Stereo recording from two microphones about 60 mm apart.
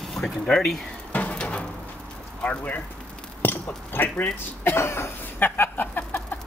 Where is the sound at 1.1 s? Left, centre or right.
Left.